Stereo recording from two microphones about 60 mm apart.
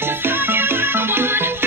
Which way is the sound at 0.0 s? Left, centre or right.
Right.